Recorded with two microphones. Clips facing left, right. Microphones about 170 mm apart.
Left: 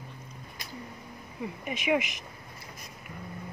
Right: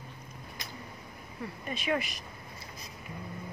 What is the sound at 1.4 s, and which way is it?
Speech, 15° left (ahead or behind).